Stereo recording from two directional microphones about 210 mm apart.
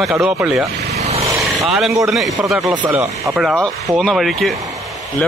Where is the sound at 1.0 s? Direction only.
30° right (ahead or behind).